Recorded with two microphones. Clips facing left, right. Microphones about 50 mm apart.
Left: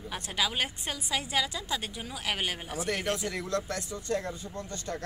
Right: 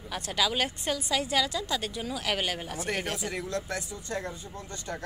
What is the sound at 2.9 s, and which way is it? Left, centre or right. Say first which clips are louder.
Speech: left 1 dB; centre.